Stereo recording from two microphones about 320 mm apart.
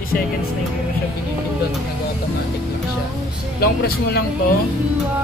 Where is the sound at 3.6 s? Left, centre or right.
Left.